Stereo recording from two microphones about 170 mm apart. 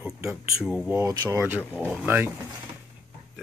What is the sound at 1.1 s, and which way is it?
Speech, 25° right (ahead or behind).